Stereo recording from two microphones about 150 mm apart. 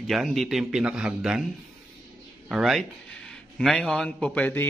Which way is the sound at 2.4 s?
5° right (ahead or behind).